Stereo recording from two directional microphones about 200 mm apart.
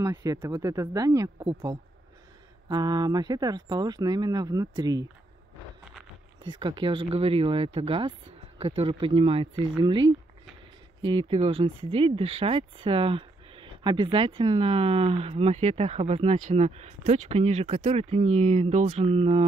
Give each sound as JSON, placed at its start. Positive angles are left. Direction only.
{"t": 0.0, "sound": "speech", "side_deg": -15}
{"t": 6.4, "sound": "speech", "side_deg": -25}
{"t": 11.1, "sound": "speech", "side_deg": -25}